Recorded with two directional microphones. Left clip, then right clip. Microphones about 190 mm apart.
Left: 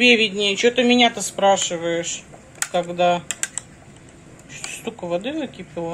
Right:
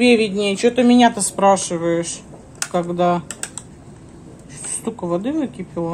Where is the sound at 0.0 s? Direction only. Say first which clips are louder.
Even; 40° right (ahead or behind).